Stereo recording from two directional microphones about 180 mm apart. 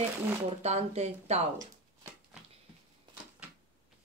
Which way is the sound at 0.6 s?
35° right (ahead or behind).